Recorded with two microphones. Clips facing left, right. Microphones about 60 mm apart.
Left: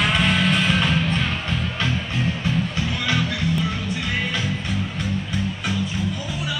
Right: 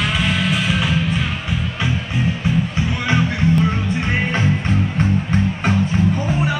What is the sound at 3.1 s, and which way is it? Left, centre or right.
Music, right.